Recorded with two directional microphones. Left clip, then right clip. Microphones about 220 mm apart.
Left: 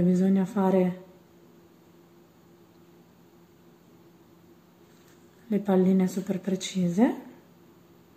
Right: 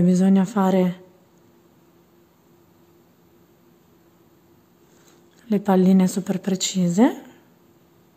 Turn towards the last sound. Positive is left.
turn(degrees=-45)  # may be behind; listen again after turning